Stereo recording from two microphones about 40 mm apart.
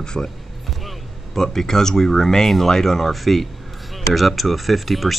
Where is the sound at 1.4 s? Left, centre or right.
Centre.